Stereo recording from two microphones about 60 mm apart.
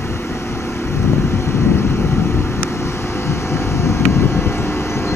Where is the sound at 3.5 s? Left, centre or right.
Left.